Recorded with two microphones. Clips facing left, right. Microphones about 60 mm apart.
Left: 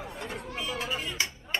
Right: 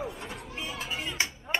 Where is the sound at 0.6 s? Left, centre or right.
Left.